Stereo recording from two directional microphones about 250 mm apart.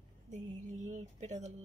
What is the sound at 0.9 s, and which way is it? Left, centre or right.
Speech, right.